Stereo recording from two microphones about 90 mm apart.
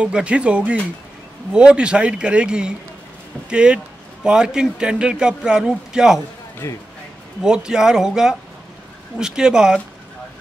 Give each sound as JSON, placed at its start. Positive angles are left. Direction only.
{"t": 0.0, "sound": "a man's voice", "side_deg": -10}
{"t": 6.6, "sound": "speech", "side_deg": 30}
{"t": 7.4, "sound": "a man's voice", "side_deg": -10}